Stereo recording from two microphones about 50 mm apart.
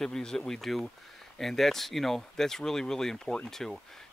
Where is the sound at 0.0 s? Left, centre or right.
Centre.